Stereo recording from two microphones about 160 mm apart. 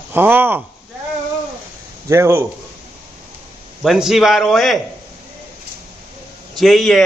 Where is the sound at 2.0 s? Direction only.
15° right (ahead or behind).